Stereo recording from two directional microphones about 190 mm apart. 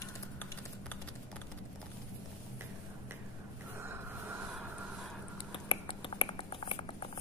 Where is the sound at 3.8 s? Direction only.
10° right (ahead or behind).